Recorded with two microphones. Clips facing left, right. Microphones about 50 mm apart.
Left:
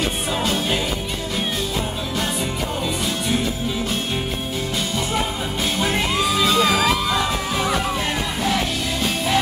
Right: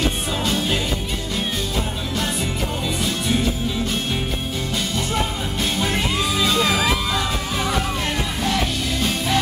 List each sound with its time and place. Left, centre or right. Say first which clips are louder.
0.4 s music: even; centre
5.8 s music: left 2 dB; centre